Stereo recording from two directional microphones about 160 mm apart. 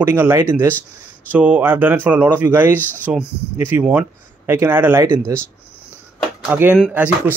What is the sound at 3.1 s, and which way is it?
Speech, 10° right (ahead or behind).